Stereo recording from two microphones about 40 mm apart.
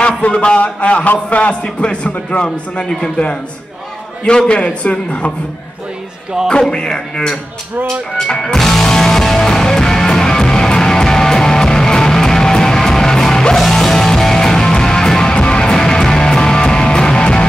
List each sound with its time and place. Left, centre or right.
0.2 s a man's voice: left
1.5 s a man's voice: left
6.7 s a man's voice: left
8.3 s music: centre